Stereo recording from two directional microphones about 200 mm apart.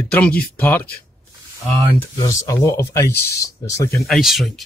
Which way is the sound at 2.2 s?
15° left (ahead or behind).